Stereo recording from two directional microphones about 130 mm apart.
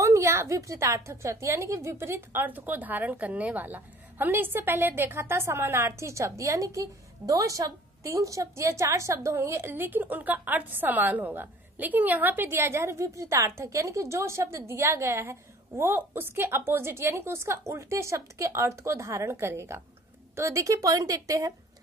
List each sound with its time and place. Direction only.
0.0 s a woman's voice: 20° right (ahead or behind)